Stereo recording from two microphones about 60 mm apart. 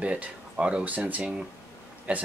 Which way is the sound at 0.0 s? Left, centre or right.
Centre.